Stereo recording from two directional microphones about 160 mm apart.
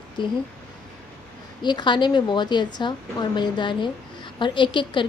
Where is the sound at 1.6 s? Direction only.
30° left (ahead or behind).